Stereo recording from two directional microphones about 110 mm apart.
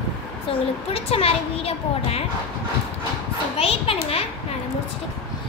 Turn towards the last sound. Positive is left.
turn(degrees=60)  # may be behind; listen again after turning